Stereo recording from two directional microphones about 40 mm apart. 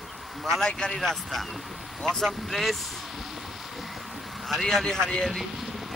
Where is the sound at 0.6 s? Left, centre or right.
Centre.